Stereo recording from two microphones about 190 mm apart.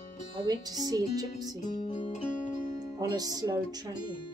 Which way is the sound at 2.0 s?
40° left (ahead or behind).